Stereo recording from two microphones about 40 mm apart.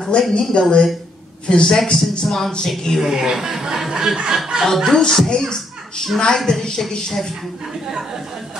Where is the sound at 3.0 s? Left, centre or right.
Centre.